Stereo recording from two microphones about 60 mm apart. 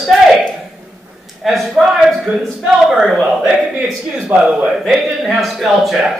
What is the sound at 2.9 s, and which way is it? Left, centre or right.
Speech, centre.